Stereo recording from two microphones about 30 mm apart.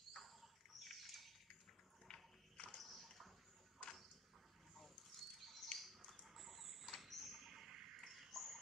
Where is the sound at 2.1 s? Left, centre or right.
Left.